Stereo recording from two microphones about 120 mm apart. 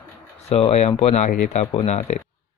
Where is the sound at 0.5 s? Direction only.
60° left (ahead or behind); by 2.1 s 80° left.